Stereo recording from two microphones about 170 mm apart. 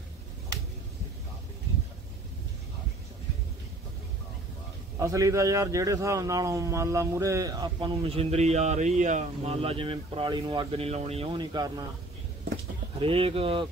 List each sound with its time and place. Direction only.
4.9 s a man's voice: 20° right (ahead or behind)
13.0 s speech: 35° right (ahead or behind)